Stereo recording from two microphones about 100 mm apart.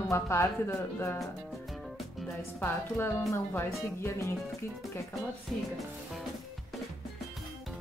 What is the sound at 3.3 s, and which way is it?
A woman's voice, 25° left (ahead or behind).